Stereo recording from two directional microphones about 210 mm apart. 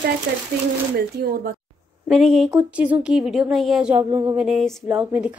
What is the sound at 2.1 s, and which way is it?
A woman's voice, centre (ahead or behind).